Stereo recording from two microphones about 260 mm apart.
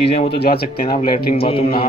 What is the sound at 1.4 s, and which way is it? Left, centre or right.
Speech, left.